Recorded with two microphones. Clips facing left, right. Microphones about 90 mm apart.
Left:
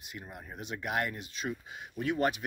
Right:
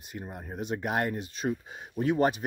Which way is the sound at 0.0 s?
40° right (ahead or behind).